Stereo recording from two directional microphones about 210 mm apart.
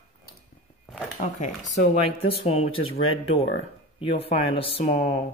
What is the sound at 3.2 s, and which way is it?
Speech, 25° left (ahead or behind).